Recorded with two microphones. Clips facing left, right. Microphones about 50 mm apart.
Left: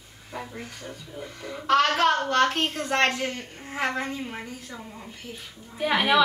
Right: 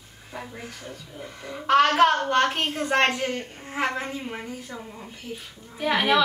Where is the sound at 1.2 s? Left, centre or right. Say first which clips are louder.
Right 1 dB; centre.